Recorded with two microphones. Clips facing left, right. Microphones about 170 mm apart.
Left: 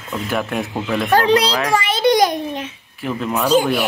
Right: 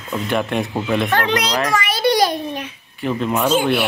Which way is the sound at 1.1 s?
35° left (ahead or behind).